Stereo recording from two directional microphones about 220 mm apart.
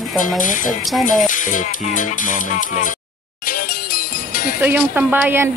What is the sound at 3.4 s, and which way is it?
Music, 40° left (ahead or behind).